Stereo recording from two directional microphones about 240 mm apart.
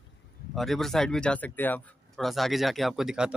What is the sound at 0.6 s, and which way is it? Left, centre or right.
Speech, centre.